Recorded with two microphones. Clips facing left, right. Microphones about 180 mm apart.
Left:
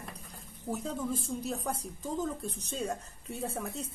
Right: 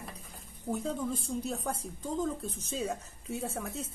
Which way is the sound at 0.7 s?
Centre (ahead or behind).